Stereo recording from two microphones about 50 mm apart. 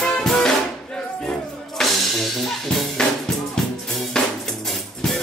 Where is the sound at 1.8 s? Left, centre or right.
Centre.